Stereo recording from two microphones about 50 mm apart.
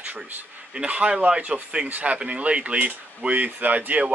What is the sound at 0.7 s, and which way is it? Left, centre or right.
Speech, right.